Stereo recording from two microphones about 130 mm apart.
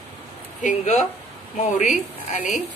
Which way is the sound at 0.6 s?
65° left (ahead or behind).